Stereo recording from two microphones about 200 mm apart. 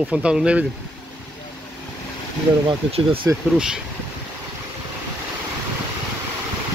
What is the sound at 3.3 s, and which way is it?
Speech, 15° right (ahead or behind).